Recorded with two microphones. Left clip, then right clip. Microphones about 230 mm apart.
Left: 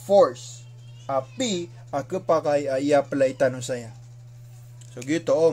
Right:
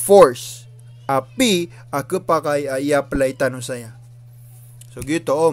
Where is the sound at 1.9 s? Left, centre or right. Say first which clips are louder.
Right 3 dB; right.